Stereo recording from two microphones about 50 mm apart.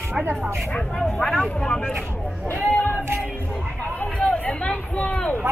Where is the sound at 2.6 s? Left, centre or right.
Left.